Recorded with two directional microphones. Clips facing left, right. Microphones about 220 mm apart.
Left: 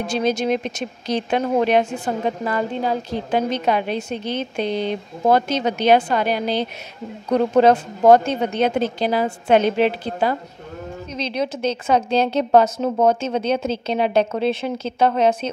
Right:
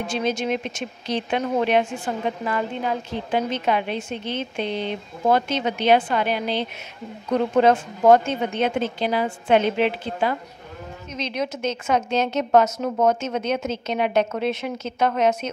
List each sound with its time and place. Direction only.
0.0 s speech: 40° left (ahead or behind)